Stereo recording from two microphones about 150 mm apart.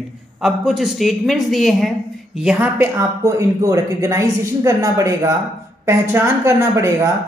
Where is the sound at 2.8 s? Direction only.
20° right (ahead or behind).